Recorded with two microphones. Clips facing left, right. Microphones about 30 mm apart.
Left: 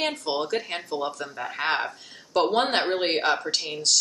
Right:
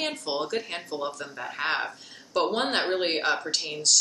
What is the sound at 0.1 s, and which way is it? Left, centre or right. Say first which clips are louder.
Speech: left 2 dB; centre.